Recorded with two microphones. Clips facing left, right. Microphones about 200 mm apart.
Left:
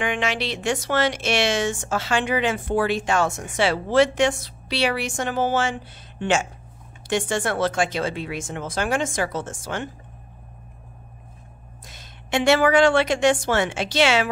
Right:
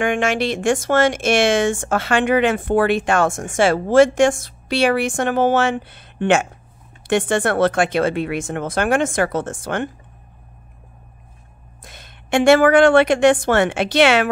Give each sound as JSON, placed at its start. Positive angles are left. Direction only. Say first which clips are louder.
{"t": 0.0, "sound": "speech", "louder": "right 6 dB", "side_deg": -50}
{"t": 11.8, "sound": "a woman's voice", "louder": "right 4 dB", "side_deg": -60}